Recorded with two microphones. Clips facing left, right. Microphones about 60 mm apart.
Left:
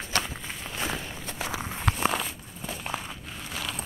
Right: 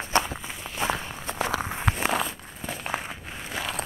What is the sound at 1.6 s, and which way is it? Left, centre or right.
Walk, centre.